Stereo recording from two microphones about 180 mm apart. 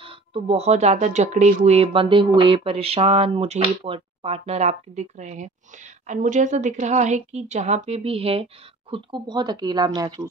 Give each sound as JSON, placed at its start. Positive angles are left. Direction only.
{"t": 0.0, "sound": "speech", "side_deg": -30}